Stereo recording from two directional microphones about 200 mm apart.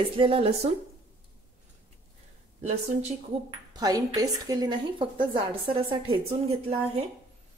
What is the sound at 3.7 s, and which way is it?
A woman's voice, 20° right (ahead or behind).